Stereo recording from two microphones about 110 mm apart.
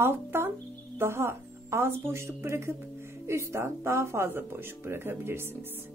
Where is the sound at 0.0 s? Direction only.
20° right (ahead or behind).